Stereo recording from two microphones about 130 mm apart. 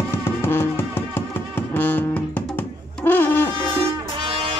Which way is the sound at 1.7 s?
15° left (ahead or behind).